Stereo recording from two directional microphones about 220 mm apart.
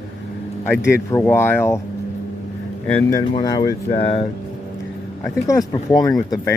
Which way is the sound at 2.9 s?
15° left (ahead or behind).